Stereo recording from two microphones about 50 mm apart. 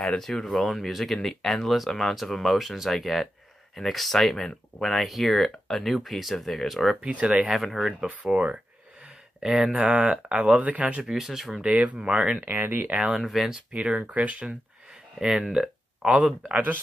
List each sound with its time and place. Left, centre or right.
0.2 s speech: centre
7.0 s speech: right
8.1 s speech: right
9.0 s a sound: centre
9.8 s speech: right
11.0 s speech: centre
11.6 s speech: right
12.4 s speech: right
12.8 s speech: right
13.1 s speech: centre
13.7 s speech: right
15.1 s speech: centre